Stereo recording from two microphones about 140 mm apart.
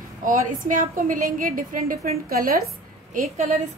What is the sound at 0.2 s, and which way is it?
A woman's voice, 70° right (ahead or behind).